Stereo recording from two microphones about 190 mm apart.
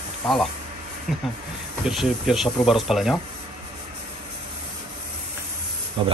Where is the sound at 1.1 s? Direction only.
Centre (ahead or behind).